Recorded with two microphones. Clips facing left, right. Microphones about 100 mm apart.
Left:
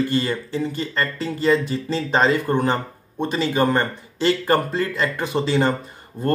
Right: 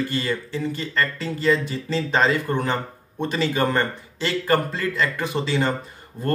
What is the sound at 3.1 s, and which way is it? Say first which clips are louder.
Speech: left 2 dB; 15° left (ahead or behind).